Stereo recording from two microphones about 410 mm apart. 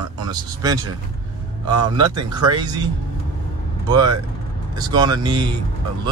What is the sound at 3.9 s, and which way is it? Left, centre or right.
Speech, centre.